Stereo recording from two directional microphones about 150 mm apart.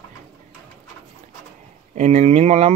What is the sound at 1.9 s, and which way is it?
Speech, 50° right (ahead or behind).